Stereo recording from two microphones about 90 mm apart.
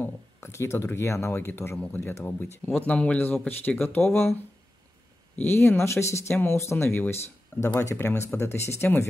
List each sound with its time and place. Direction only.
0.4 s speech: 30° left (ahead or behind)